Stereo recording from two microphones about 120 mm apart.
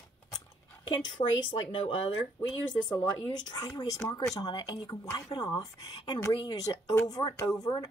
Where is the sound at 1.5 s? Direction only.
50° left (ahead or behind).